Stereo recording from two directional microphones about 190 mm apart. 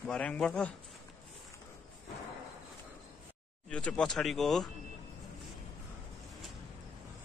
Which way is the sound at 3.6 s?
5° left (ahead or behind).